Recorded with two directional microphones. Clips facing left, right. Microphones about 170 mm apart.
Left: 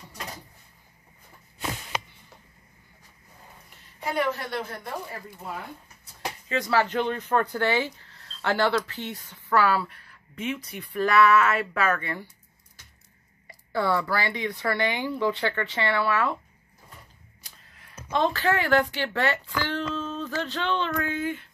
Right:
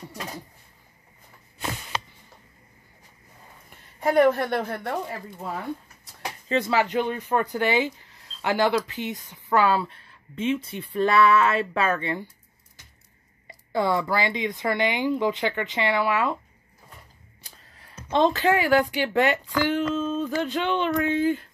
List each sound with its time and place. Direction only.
4.0 s a woman's voice: 50° right (ahead or behind)
6.5 s speech: 25° right (ahead or behind)
6.8 s speech: 15° right (ahead or behind)
13.5 s speech: 20° right (ahead or behind)
17.4 s speech: 30° right (ahead or behind)
21.2 s speech: 35° right (ahead or behind)